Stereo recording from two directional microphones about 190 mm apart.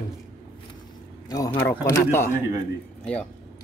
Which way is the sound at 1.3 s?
15° left (ahead or behind).